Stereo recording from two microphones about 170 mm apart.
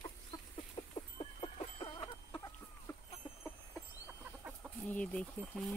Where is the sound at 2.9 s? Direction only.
15° left (ahead or behind).